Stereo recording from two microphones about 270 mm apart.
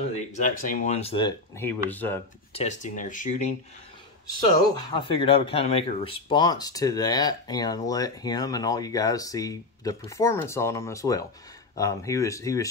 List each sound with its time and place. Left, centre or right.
0.1 s speech: left; by 2.2 s centre
2.5 s speech: left